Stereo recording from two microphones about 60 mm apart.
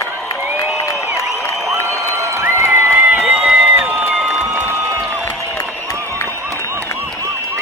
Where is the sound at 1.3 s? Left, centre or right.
Centre.